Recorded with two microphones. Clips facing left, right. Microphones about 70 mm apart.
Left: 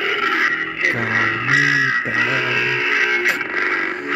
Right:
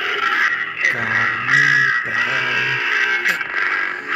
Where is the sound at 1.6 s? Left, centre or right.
Right.